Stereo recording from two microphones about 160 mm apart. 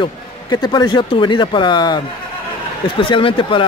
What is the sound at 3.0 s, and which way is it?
Speech, 30° left (ahead or behind).